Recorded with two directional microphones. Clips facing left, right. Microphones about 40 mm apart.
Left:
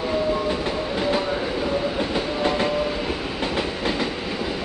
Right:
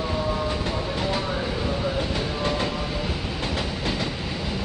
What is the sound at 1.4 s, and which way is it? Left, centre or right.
Train, centre.